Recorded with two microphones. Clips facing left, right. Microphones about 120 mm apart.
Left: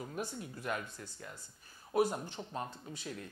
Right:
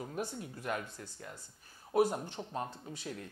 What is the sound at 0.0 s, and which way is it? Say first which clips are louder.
Speech: right 2 dB; 30° right (ahead or behind).